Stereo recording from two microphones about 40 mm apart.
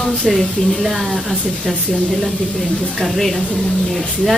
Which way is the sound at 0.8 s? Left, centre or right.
Centre.